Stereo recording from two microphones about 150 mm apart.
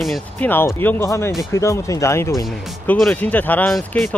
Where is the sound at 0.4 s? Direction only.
15° left (ahead or behind).